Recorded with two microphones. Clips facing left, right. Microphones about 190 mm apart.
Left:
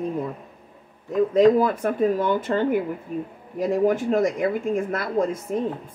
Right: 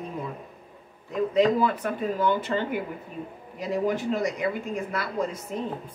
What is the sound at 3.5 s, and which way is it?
A woman's voice, 50° left (ahead or behind).